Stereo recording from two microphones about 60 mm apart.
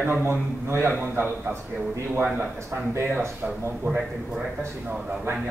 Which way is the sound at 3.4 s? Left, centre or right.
Centre.